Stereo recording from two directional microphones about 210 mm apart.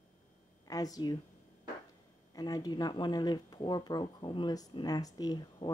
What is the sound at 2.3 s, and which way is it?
Speech, 15° left (ahead or behind).